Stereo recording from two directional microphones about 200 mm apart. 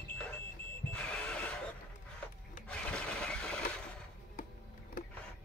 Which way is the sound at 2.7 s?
5° left (ahead or behind).